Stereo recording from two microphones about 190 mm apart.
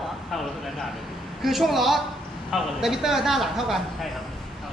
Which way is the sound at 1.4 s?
Centre (ahead or behind).